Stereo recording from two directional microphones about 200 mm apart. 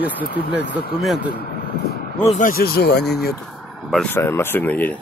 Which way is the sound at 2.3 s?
40° left (ahead or behind).